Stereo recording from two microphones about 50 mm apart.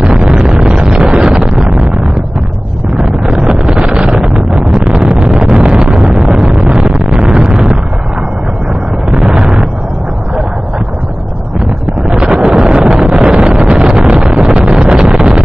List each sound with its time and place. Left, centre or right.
0.0 s wind noise: centre
1.9 s a sound: right
3.0 s wind noise: centre
3.3 s vehicle: centre
4.0 s wind noise: centre
4.6 s a sound: centre
9.1 s explosion: centre
12.1 s wind noise: right